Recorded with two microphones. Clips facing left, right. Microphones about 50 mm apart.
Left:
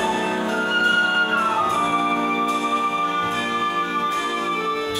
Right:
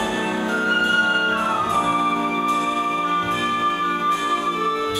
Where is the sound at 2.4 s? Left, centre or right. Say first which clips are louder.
Even; centre.